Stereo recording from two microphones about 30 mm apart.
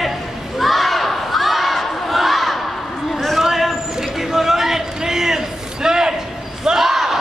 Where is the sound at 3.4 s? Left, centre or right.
Centre.